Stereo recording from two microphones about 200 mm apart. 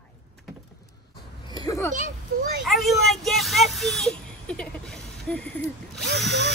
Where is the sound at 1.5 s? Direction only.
20° left (ahead or behind).